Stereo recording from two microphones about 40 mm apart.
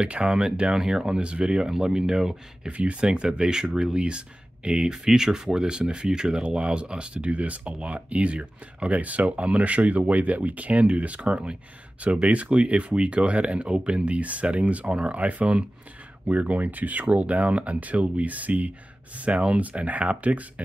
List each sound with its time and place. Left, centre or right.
0.0 s speech: right
2.7 s speech: right
3.1 s speech: right